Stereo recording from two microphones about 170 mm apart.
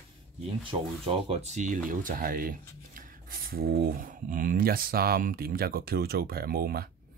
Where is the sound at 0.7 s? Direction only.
35° right (ahead or behind).